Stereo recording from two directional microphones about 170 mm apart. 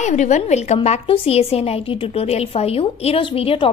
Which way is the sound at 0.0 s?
45° left (ahead or behind).